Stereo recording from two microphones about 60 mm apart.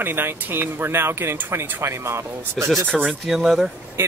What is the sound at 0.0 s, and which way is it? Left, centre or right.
Speech, right.